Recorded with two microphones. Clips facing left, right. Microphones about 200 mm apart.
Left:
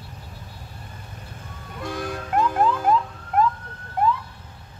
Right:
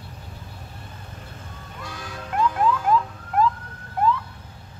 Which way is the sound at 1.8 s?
55° left (ahead or behind).